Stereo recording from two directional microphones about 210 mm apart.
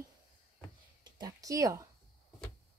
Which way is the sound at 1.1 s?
15° right (ahead or behind).